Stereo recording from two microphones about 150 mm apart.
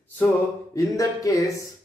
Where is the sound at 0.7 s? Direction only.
20° left (ahead or behind).